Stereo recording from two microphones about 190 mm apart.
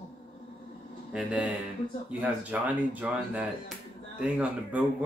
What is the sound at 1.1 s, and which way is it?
Speech, 5° right (ahead or behind).